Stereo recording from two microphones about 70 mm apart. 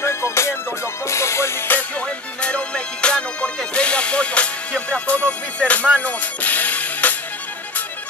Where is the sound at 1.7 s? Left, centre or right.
Centre.